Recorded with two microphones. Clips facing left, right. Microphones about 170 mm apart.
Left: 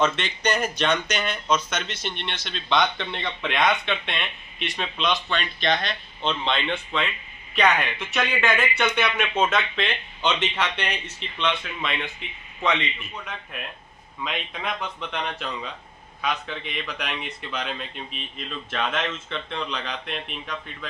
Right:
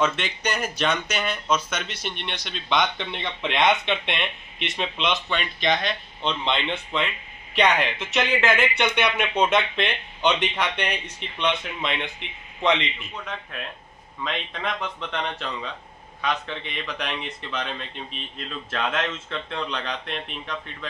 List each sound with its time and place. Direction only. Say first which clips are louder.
0.0 s a man's voice: left 1 dB; 10° right (ahead or behind)
14.2 s speech: right 1 dB; 5° left (ahead or behind)